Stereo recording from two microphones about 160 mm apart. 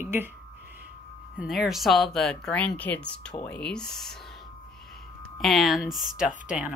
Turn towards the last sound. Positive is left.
turn(degrees=-5)  # may be behind; listen again after turning